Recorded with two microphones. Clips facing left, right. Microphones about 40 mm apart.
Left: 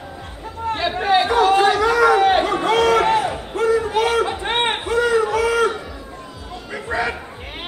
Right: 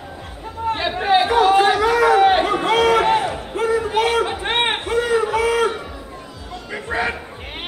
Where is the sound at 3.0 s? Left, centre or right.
Centre.